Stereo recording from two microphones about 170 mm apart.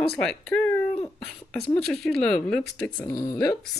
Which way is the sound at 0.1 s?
5° left (ahead or behind).